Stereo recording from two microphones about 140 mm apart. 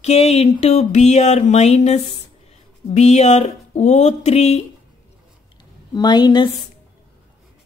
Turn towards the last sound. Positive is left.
turn(degrees=30)  # may be behind; listen again after turning